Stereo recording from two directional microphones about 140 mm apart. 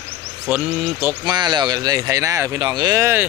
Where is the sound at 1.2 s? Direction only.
30° right (ahead or behind).